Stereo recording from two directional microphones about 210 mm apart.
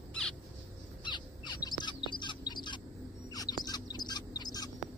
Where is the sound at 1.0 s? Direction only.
20° left (ahead or behind).